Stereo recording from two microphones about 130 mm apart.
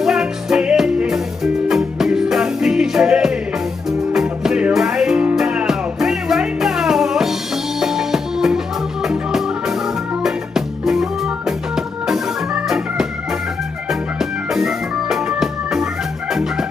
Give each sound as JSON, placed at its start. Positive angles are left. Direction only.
{"t": 0.0, "sound": "music", "side_deg": -5}
{"t": 12.6, "sound": "organ", "side_deg": -5}
{"t": 14.5, "sound": "music", "side_deg": -5}